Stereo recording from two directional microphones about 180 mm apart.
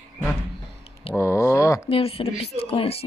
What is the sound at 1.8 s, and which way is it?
Speech, 30° left (ahead or behind).